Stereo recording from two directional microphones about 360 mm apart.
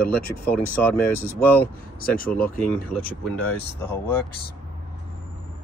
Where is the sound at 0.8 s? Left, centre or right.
Centre.